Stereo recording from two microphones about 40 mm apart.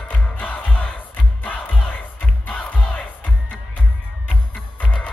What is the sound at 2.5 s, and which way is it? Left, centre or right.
Crowd, left.